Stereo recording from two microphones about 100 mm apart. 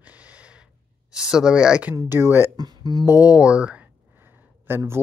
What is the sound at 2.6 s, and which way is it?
Speech, 40° right (ahead or behind).